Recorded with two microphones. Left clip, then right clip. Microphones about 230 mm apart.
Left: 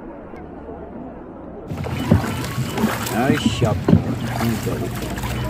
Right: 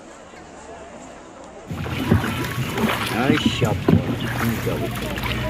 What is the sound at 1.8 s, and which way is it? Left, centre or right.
Boat, left.